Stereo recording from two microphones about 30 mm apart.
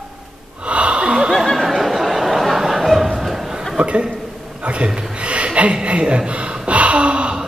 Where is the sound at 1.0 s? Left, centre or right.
Right.